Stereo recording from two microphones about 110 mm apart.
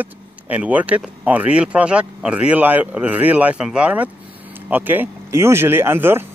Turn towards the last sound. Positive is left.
turn(degrees=-20)  # may be behind; listen again after turning